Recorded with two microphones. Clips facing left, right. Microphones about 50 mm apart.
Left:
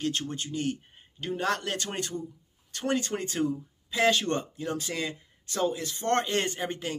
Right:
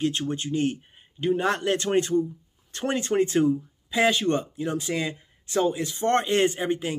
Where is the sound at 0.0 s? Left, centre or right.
Right.